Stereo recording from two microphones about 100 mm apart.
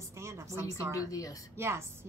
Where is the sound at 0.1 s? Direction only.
30° right (ahead or behind).